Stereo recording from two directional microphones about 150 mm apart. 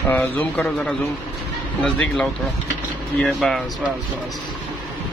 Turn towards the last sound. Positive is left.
turn(degrees=0)  # may be behind; listen again after turning